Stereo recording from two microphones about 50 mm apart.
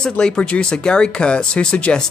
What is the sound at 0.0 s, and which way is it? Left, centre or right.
Speech, centre.